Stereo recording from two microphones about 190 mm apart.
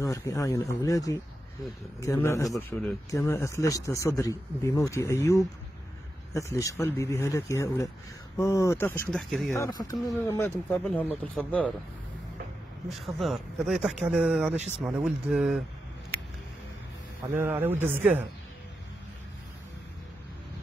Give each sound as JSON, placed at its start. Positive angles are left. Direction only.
{"t": 0.0, "sound": "speech", "side_deg": 15}
{"t": 9.6, "sound": "speech", "side_deg": 20}
{"t": 12.8, "sound": "speech", "side_deg": 0}
{"t": 14.5, "sound": "speech", "side_deg": -35}
{"t": 14.9, "sound": "speech", "side_deg": -5}
{"t": 17.3, "sound": "a man's voice", "side_deg": -10}